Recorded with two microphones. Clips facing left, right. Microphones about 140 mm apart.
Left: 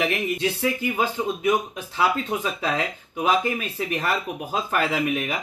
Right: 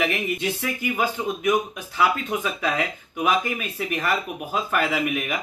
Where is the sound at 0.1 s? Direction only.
30° left (ahead or behind).